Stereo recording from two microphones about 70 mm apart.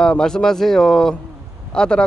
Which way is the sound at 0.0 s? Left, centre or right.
Centre.